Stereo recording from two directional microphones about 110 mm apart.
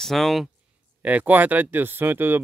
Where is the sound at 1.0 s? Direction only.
15° right (ahead or behind).